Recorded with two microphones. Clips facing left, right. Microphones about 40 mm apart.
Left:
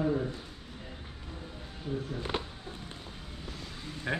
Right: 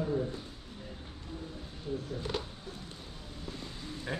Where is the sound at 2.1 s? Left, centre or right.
Left.